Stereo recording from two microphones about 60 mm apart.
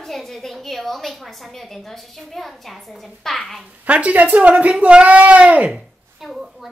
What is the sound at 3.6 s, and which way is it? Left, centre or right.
Speech, right.